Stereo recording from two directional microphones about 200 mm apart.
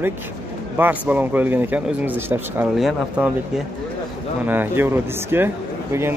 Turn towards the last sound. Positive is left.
turn(degrees=-10)  # may be behind; listen again after turning